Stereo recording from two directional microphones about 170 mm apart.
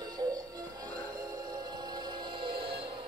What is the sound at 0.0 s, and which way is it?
Music, 25° right (ahead or behind).